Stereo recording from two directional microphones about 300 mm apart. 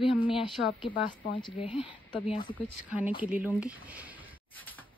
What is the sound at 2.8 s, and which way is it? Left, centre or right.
Speech, centre.